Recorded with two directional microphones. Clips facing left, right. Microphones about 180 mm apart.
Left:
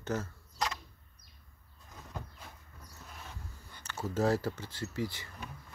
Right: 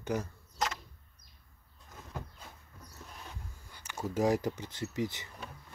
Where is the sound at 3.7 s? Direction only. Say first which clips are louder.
Right 1 dB; 15° right (ahead or behind).